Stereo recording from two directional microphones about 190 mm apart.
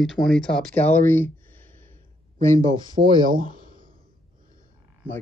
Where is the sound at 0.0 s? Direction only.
Centre (ahead or behind).